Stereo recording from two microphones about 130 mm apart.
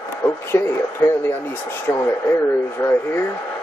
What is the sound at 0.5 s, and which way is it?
Speech, 20° left (ahead or behind).